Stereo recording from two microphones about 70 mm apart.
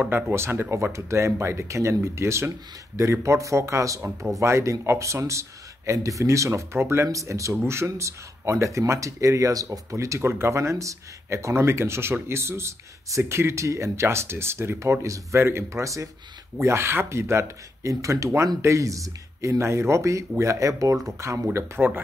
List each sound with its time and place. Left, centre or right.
0.1 s speech: right
7.5 s speech: right
16.6 s speech: right
21.5 s speech: right